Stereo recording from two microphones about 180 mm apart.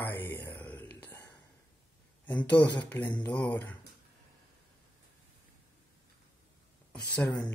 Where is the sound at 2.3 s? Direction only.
10° left (ahead or behind).